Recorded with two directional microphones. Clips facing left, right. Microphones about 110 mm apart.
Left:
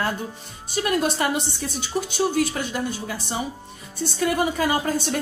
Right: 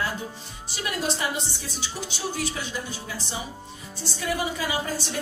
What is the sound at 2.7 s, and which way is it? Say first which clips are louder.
A woman's voice: left 6 dB; 55° left (ahead or behind).